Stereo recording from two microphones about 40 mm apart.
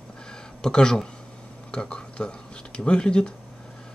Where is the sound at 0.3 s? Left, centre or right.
Centre.